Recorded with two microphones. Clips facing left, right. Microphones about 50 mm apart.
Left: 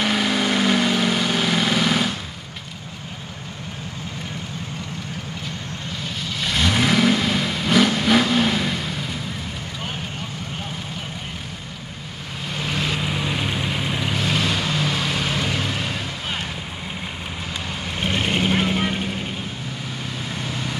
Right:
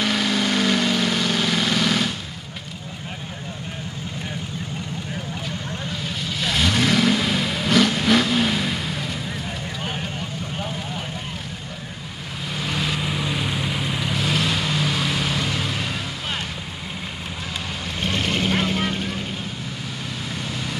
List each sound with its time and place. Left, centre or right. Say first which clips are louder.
0.0 s vehicle: left 1 dB; centre
6.2 s vehicle: even; centre
12.5 s vehicle: left 1 dB; centre
18.0 s vehicle: left 1 dB; centre
20.3 s vehicle: left 1 dB; centre